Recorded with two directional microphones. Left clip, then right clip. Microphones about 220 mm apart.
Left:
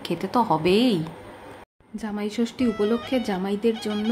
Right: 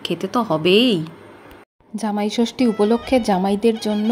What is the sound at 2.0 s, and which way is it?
A woman's voice, 25° right (ahead or behind).